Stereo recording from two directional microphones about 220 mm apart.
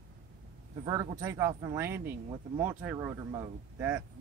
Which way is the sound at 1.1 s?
15° right (ahead or behind).